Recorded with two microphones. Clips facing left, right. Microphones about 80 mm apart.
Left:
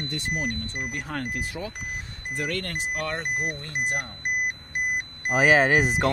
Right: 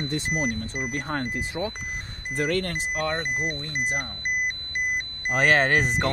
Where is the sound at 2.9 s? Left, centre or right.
Centre.